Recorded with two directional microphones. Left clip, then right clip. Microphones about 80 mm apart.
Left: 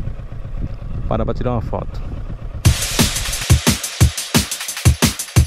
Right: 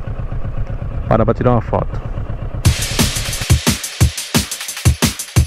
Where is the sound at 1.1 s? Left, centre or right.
Centre.